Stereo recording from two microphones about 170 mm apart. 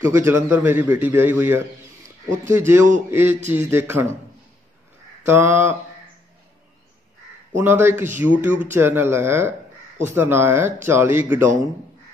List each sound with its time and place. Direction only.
0.0 s a man's voice: 15° right (ahead or behind)
5.2 s a man's voice: 15° right (ahead or behind)
7.5 s a man's voice: 15° right (ahead or behind)